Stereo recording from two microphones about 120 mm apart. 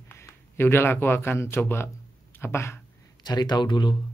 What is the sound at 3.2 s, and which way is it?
Speech, 35° left (ahead or behind).